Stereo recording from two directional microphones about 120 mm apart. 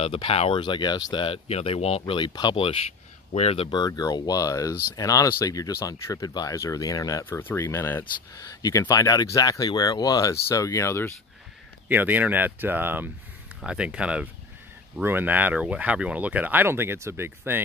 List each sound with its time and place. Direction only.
0.0 s speech: 55° left (ahead or behind)
0.6 s speech: 40° left (ahead or behind)
3.3 s speech: 60° left (ahead or behind)
3.7 s speech: 35° left (ahead or behind)
7.2 s speech: 20° left (ahead or behind)
8.0 s speech: 30° left (ahead or behind)
11.9 s speech: 15° right (ahead or behind)